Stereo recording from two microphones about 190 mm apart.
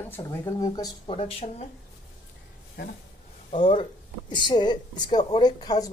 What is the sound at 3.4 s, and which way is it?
Speech, 30° left (ahead or behind).